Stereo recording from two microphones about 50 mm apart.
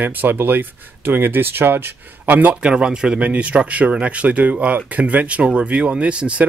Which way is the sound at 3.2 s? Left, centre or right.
Right.